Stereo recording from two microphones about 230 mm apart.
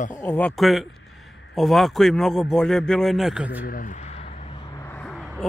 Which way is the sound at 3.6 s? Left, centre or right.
Left.